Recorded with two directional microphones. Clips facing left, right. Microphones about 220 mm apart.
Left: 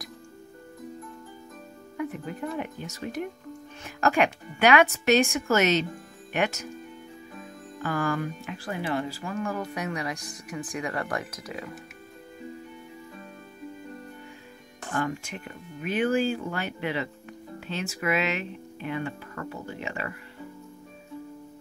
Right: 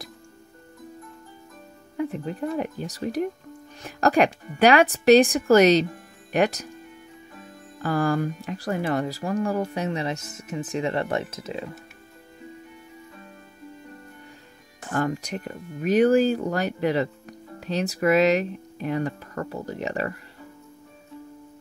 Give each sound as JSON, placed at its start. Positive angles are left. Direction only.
{"t": 2.0, "sound": "speech", "side_deg": -30}
{"t": 7.8, "sound": "speech", "side_deg": -35}
{"t": 15.0, "sound": "speech", "side_deg": -40}